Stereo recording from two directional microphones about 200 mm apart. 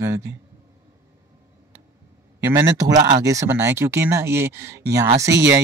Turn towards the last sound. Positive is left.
turn(degrees=-15)  # may be behind; listen again after turning